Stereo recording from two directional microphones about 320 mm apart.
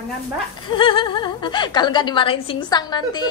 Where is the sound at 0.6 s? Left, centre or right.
Centre.